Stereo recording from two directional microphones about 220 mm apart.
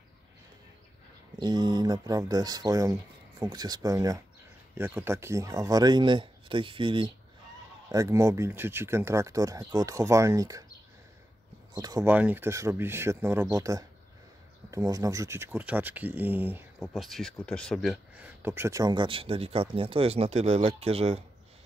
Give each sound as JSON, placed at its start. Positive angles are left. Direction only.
{"t": 1.4, "sound": "speech", "side_deg": -20}
{"t": 11.7, "sound": "speech", "side_deg": -15}